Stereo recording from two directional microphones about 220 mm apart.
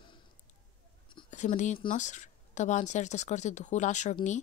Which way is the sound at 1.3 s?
35° left (ahead or behind).